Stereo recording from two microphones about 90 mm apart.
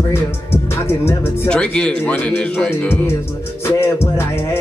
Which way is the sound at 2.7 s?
25° left (ahead or behind).